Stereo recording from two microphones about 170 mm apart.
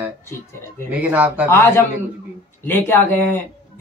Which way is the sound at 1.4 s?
15° left (ahead or behind).